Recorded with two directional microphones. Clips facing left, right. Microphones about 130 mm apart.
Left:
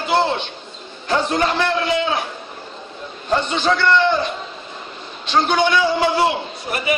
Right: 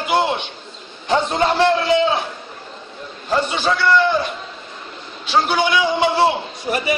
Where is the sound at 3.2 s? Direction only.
5° right (ahead or behind).